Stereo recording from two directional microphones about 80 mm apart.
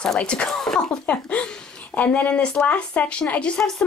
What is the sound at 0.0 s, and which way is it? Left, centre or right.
Speech, centre.